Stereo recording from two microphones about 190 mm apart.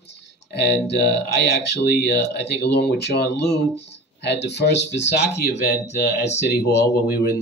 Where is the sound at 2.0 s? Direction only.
60° left (ahead or behind).